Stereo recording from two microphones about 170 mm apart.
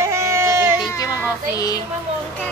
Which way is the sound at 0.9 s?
20° left (ahead or behind).